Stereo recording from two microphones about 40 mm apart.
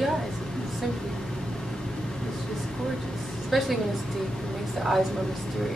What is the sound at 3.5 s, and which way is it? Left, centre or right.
Speech, centre.